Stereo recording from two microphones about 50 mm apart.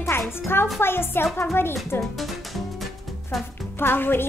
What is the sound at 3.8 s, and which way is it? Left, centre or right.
Speech, left.